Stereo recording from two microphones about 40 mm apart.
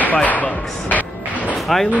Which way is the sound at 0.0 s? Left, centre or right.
Left.